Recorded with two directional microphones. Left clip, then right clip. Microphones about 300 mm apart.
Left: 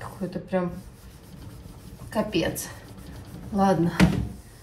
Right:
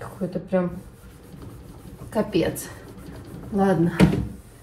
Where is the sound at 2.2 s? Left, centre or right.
Centre.